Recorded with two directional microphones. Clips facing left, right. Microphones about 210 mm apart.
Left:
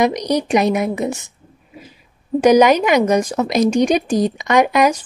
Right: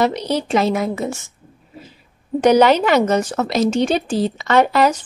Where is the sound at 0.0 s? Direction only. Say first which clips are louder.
Left 2 dB; 15° left (ahead or behind).